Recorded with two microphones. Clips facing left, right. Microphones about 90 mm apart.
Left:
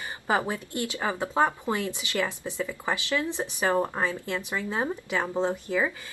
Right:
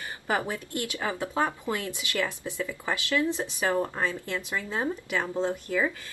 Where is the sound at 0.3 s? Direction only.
20° left (ahead or behind).